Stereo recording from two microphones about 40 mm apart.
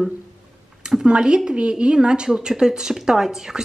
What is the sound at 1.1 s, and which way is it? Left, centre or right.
A woman's voice, right.